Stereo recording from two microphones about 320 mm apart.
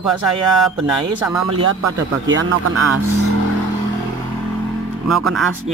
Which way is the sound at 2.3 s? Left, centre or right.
Right.